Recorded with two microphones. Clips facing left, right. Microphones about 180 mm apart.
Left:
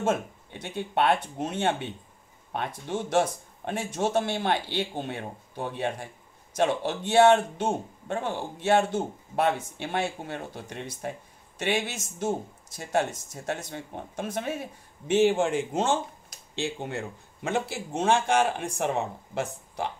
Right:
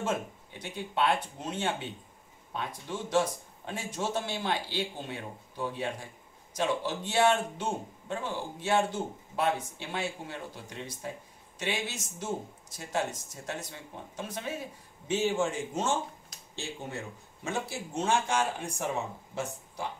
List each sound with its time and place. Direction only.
0.0 s speech: 60° left (ahead or behind)
13.5 s speech: 55° left (ahead or behind)